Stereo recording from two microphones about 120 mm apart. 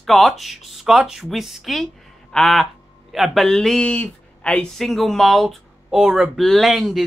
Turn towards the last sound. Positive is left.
turn(degrees=0)  # may be behind; listen again after turning